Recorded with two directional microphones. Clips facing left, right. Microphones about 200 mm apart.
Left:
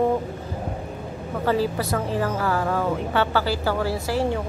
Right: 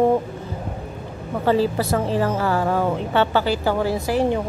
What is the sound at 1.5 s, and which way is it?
A woman's voice, 25° right (ahead or behind).